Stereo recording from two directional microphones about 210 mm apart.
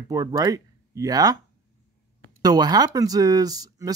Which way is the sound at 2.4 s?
20° right (ahead or behind).